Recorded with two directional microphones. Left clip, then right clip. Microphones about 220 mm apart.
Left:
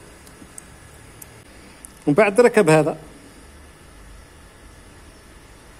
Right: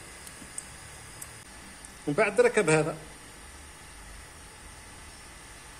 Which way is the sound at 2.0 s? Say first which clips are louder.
Left 9 dB; 40° left (ahead or behind).